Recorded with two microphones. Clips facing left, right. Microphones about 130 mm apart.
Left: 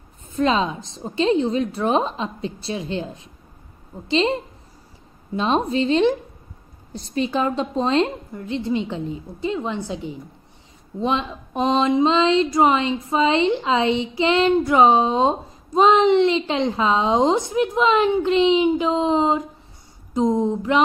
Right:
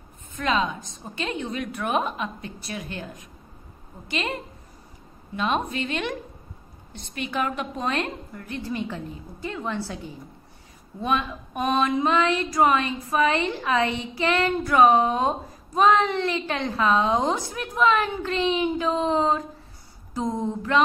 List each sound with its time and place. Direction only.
0.3 s speech: 30° left (ahead or behind)